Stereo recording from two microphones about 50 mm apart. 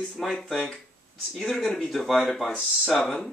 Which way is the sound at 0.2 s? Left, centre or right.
Centre.